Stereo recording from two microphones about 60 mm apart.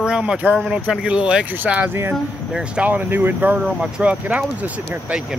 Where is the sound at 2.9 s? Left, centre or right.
Right.